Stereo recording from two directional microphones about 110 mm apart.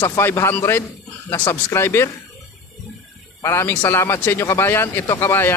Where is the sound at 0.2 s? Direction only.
20° left (ahead or behind).